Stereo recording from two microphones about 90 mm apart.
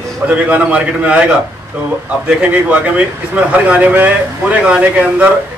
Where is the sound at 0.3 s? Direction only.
15° right (ahead or behind).